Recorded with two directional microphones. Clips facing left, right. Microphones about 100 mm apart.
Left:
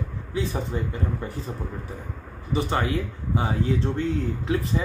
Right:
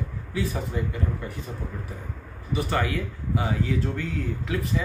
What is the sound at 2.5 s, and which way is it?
Speech, 25° left (ahead or behind).